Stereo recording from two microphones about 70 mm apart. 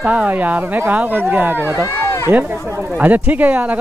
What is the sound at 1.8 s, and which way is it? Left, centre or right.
Run, left.